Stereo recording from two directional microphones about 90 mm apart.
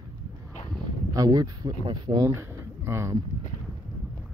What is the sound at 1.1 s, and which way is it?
Speech, 45° right (ahead or behind).